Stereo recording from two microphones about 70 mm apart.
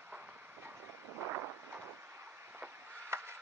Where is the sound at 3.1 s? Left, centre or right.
Right.